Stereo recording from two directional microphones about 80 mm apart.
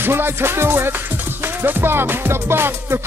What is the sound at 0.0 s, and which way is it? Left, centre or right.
Music, right.